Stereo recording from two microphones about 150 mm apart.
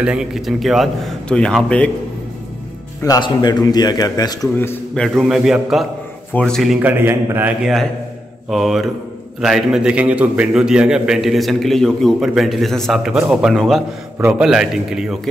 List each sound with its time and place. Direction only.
0.0 s a man's voice: 5° right (ahead or behind)
3.0 s speech: 25° left (ahead or behind)
4.6 s a man's voice: 15° left (ahead or behind)
5.2 s a man's voice: centre (ahead or behind)
6.8 s a man's voice: 15° right (ahead or behind)
7.6 s a man's voice: centre (ahead or behind)